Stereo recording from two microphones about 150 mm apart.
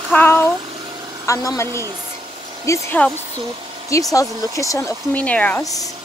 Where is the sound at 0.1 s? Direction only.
15° left (ahead or behind).